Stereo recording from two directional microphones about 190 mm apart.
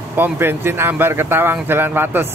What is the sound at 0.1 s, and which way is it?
Speech, 10° right (ahead or behind).